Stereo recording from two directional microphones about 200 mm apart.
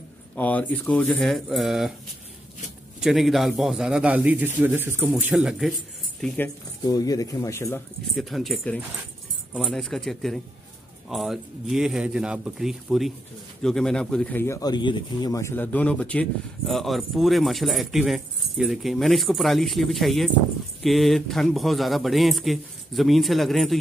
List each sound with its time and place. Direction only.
0.4 s speech: 10° left (ahead or behind)
3.0 s a man's voice: centre (ahead or behind)
6.2 s speech: 10° left (ahead or behind)
8.2 s speech: centre (ahead or behind)